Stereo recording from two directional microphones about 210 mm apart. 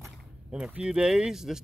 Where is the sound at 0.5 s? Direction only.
5° right (ahead or behind).